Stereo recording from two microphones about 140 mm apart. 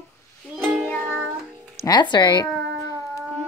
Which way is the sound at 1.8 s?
30° left (ahead or behind).